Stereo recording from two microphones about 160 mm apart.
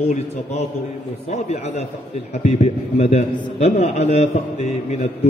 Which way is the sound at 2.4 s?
40° left (ahead or behind).